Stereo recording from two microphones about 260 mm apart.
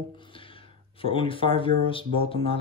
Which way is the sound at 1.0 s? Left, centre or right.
Left.